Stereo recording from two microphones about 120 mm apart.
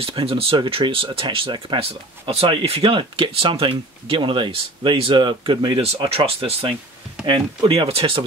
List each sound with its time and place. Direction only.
0.0 s speech: 50° right (ahead or behind)